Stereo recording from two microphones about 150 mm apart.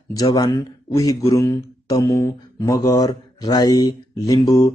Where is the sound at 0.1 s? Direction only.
25° left (ahead or behind).